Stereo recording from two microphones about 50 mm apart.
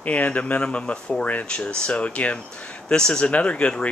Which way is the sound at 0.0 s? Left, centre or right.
Left.